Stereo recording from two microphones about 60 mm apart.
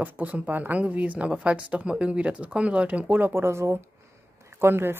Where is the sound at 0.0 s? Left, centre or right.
Right.